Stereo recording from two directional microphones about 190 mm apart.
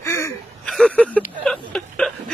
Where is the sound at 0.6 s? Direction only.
5° left (ahead or behind).